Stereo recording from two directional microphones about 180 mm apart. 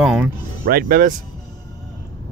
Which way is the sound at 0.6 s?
55° right (ahead or behind).